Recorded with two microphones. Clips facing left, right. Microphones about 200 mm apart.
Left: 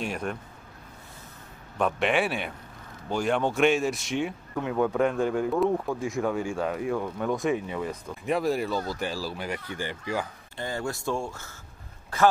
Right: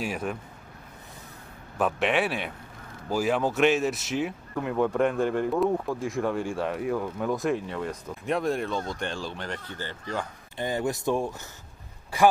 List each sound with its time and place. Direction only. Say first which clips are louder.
0.0 s speech: right 1 dB; 5° right (ahead or behind)
1.8 s speech: even; centre (ahead or behind)
10.6 s speech: right 4 dB; 20° right (ahead or behind)